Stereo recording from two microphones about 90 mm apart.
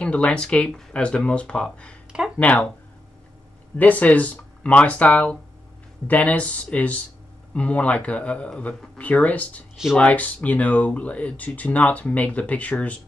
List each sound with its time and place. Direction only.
0.0 s speech: 10° left (ahead or behind)
3.7 s speech: 20° left (ahead or behind)